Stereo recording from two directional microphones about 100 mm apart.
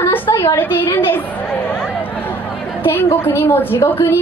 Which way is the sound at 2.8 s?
25° left (ahead or behind).